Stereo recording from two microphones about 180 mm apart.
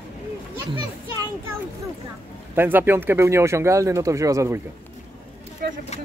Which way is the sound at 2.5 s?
10° right (ahead or behind).